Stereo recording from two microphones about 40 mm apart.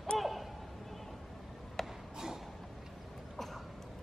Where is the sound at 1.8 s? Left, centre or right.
Centre.